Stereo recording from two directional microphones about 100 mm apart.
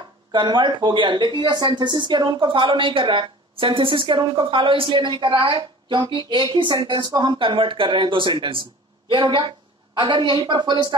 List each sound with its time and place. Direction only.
0.3 s speech: 50° right (ahead or behind)